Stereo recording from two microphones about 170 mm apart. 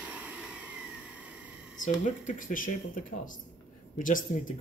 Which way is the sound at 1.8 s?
50° left (ahead or behind).